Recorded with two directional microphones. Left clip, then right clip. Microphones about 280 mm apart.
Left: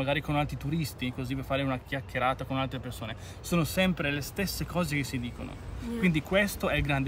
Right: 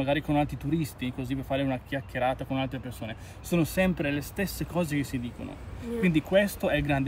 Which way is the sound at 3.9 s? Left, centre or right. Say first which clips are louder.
Right 1 dB; centre.